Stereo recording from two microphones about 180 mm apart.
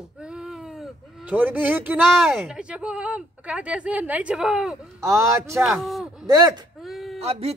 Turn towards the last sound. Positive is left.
turn(degrees=-35)  # may be behind; listen again after turning